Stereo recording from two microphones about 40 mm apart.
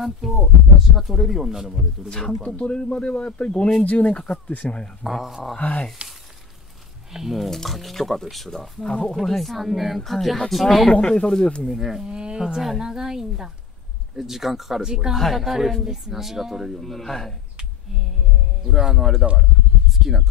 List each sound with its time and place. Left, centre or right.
0.0 s speech: centre
2.0 s speech: centre; by 4.7 s left
5.0 s speech: centre
6.0 s sizzle: right
7.1 s speech: centre
7.3 s speech: centre
8.8 s speech: centre
9.2 s speech: centre
10.9 s speech: left
11.8 s a woman's voice: centre
12.1 s a woman's voice: right
15.1 s a woman's voice: centre
16.8 s speech: centre
18.6 s a woman's voice: centre